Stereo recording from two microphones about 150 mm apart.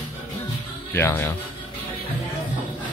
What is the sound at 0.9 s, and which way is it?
Speech, 15° left (ahead or behind).